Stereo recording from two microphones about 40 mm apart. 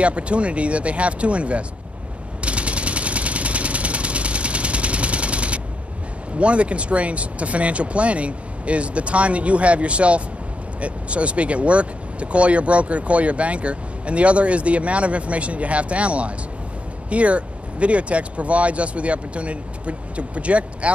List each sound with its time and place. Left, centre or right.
0.0 s speech: right
2.4 s vehicle: right
6.3 s speech: right